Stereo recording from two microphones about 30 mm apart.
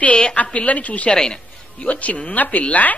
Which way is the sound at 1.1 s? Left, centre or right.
Left.